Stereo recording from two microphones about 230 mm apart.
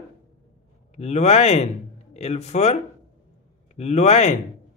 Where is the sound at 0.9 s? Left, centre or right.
Left.